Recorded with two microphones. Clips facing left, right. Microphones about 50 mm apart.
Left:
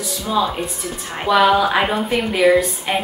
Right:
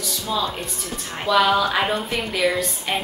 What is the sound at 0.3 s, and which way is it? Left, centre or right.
A woman's voice, centre.